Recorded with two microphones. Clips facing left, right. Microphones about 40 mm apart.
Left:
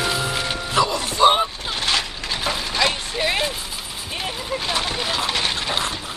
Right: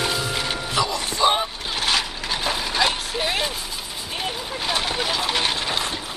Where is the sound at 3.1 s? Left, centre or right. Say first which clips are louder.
Left 2 dB; centre.